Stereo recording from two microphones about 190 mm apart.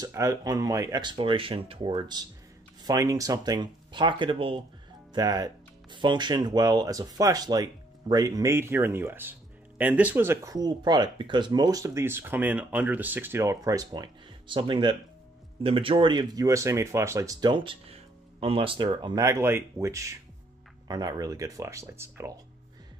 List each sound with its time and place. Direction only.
0.0 s speech: 15° right (ahead or behind)